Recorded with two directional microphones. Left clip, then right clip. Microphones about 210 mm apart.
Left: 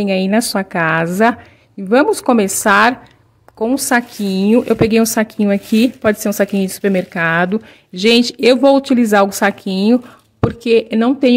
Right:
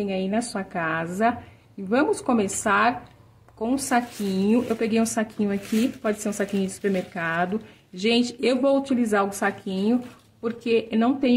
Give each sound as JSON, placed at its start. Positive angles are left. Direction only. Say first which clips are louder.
{"t": 0.0, "sound": "speech", "louder": "left 11 dB", "side_deg": 50}